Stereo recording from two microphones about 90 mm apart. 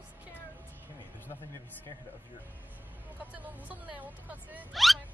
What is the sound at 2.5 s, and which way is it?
Speech, 20° right (ahead or behind).